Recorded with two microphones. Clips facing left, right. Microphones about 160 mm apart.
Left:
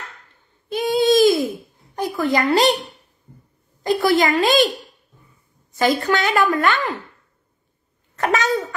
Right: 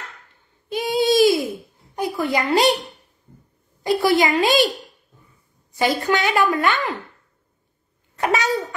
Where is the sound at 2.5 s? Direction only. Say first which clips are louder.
Right 1 dB; 10° right (ahead or behind).